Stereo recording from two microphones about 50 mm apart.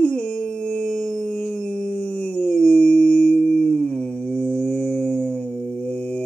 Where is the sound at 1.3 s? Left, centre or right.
Left.